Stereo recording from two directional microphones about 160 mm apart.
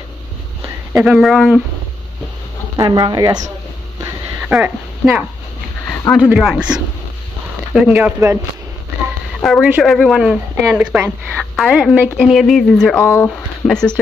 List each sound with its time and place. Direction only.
0.9 s a woman's voice: 5° right (ahead or behind)
2.8 s speech: 25° right (ahead or behind)
4.5 s speech: 10° right (ahead or behind)
5.9 s a sound: 5° left (ahead or behind)
6.2 s a woman's voice: 5° right (ahead or behind)
9.4 s a woman's voice: centre (ahead or behind)
13.0 s speech: 15° left (ahead or behind)
13.7 s a woman's voice: 5° left (ahead or behind)